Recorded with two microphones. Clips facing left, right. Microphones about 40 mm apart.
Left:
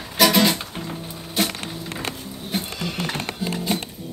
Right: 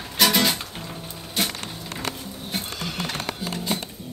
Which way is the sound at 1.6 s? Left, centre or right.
Left.